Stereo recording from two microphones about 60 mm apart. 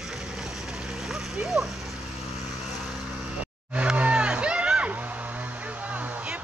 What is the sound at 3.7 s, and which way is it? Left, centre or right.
Vehicle, right.